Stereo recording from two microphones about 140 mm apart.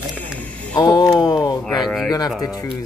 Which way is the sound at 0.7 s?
30° left (ahead or behind).